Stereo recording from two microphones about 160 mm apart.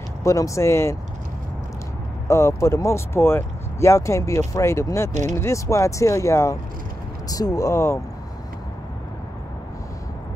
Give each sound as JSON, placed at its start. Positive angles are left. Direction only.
{"t": 0.2, "sound": "speech", "side_deg": 20}
{"t": 2.2, "sound": "speech", "side_deg": 20}